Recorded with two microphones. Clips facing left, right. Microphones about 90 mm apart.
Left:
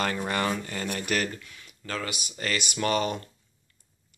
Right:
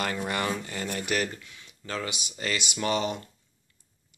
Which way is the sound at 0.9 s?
15° right (ahead or behind).